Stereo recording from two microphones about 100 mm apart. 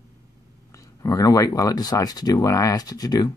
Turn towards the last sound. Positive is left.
turn(degrees=40)  # may be behind; listen again after turning